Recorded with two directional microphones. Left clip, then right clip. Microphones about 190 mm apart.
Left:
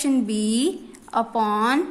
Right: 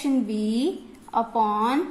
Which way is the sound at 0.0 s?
40° left (ahead or behind).